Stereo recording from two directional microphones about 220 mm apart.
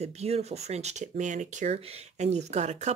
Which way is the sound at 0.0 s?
30° right (ahead or behind).